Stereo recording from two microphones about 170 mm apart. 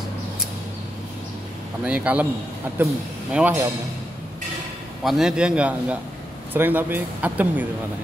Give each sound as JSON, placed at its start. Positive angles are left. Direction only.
{"t": 1.9, "sound": "speech", "side_deg": -10}
{"t": 3.3, "sound": "speech", "side_deg": -10}
{"t": 5.0, "sound": "a man's voice", "side_deg": 0}